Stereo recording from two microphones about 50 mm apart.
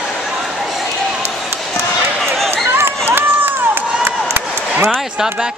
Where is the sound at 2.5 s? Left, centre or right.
Right.